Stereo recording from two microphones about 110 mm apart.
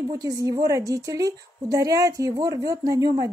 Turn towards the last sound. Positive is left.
turn(degrees=-35)  # may be behind; listen again after turning